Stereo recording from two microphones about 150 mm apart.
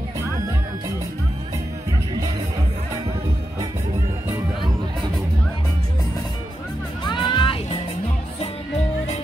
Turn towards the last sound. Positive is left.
turn(degrees=35)  # may be behind; listen again after turning